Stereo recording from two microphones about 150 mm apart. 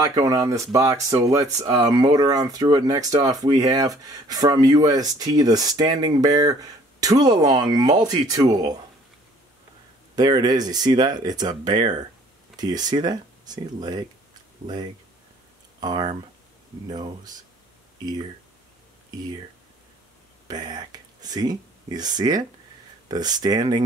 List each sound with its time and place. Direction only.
0.1 s speech: 25° right (ahead or behind)
10.1 s speech: 25° right (ahead or behind)
15.8 s speech: 30° right (ahead or behind)
20.4 s speech: 25° right (ahead or behind)